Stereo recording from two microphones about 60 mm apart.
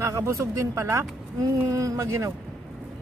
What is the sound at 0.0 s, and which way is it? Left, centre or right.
Speech, right.